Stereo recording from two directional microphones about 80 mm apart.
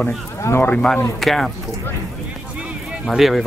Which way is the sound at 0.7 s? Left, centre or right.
Centre.